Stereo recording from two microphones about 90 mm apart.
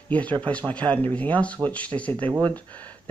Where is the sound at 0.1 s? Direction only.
15° left (ahead or behind).